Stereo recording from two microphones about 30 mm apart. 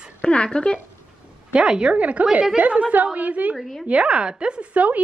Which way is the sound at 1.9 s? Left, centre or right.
Right.